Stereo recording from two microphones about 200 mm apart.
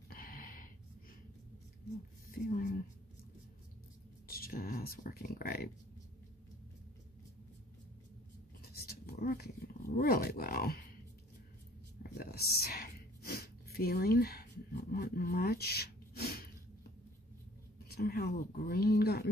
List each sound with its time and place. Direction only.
0.1 s a sound: 45° left (ahead or behind)
2.3 s speech: 45° left (ahead or behind)
4.3 s speech: 50° left (ahead or behind)
8.7 s speech: 50° left (ahead or behind)
12.1 s a sound: 50° left (ahead or behind)
17.9 s speech: 50° left (ahead or behind)